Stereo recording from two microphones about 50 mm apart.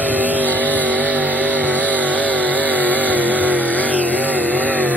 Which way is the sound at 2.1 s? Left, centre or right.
Left.